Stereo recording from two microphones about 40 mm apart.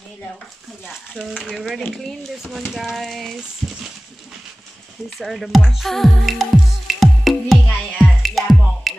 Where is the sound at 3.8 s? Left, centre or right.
Centre.